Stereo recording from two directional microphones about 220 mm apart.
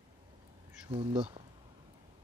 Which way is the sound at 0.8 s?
25° right (ahead or behind).